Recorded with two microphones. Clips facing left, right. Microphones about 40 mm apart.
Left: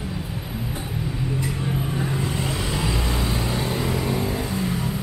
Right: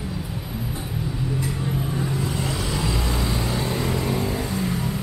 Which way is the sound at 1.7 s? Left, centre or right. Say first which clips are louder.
Even; centre.